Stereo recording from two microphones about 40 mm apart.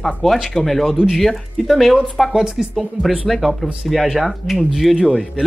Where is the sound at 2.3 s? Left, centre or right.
Centre.